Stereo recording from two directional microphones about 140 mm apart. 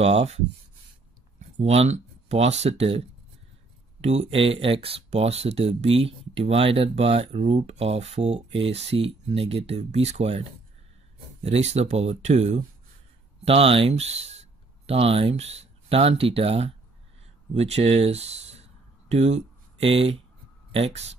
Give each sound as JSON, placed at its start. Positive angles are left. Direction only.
{"t": 0.0, "sound": "speech", "side_deg": -50}
{"t": 1.6, "sound": "speech", "side_deg": -50}
{"t": 4.0, "sound": "speech", "side_deg": -50}
{"t": 11.4, "sound": "speech", "side_deg": -50}